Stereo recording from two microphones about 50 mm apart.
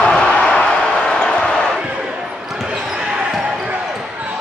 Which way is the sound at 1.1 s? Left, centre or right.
Centre.